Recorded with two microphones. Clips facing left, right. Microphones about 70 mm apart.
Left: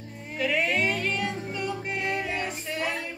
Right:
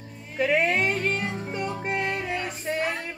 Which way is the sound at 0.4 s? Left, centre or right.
Right.